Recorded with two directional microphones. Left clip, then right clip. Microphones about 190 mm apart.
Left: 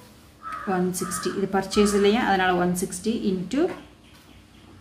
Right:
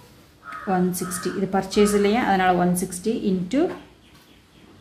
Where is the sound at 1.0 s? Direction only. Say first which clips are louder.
Even; 20° right (ahead or behind).